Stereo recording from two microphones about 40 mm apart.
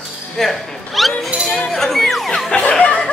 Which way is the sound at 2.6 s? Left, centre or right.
Left.